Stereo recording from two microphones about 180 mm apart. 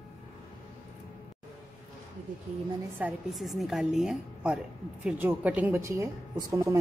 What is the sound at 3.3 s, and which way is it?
A woman's voice, centre (ahead or behind).